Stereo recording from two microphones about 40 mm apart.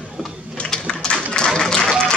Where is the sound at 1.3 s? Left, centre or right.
Centre.